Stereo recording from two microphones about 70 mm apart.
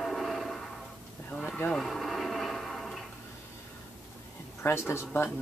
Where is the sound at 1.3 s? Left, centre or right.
Left.